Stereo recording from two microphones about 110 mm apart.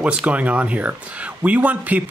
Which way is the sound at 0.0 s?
10° right (ahead or behind).